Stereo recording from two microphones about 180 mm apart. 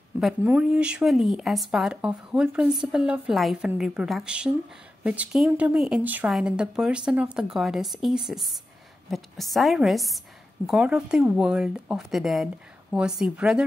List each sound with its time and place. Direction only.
0.2 s speech: 5° right (ahead or behind)